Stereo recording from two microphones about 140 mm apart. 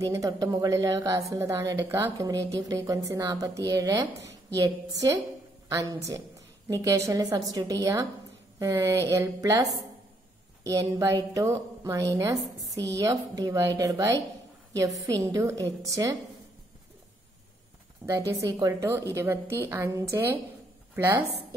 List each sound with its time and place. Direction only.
0.0 s a woman's voice: 25° right (ahead or behind)
10.7 s a woman's voice: 25° right (ahead or behind)
18.0 s a woman's voice: 20° right (ahead or behind)